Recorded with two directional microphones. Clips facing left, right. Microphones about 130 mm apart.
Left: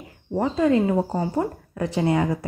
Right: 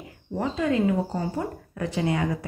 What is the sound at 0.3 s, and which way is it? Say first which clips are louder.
Speech: left 5 dB; 35° left (ahead or behind).